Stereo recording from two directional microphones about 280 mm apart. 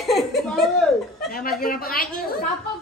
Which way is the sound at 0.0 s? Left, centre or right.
Centre.